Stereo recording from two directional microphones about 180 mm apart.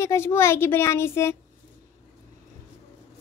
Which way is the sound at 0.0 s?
15° left (ahead or behind).